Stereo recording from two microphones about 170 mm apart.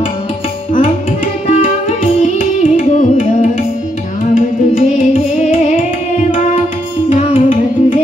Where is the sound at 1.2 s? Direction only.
40° left (ahead or behind).